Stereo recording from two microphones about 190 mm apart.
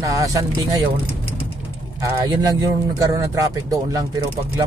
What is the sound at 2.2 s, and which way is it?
Speech, 20° right (ahead or behind).